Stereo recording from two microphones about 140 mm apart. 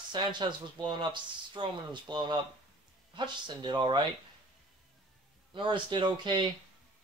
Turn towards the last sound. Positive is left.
turn(degrees=-35)  # may be behind; listen again after turning